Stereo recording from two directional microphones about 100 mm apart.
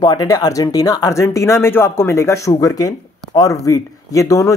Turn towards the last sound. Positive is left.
turn(degrees=30)  # may be behind; listen again after turning